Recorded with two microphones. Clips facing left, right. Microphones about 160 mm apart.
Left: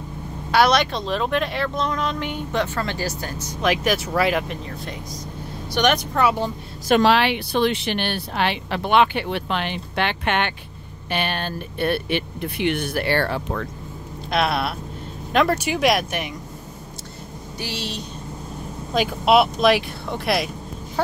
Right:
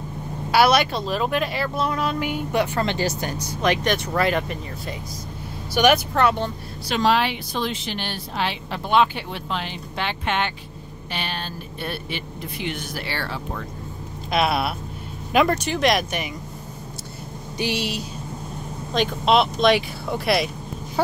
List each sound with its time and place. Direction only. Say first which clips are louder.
0.5 s speech: even; 5° right (ahead or behind)
3.6 s speech: left 1 dB; 5° left (ahead or behind)
6.2 s speech: left 3 dB; 10° left (ahead or behind)
6.9 s speech: left 4 dB; 70° left (ahead or behind)
14.3 s speech: even; centre (ahead or behind)
17.6 s speech: right 5 dB; 15° right (ahead or behind)
18.9 s speech: left 2 dB; 5° left (ahead or behind)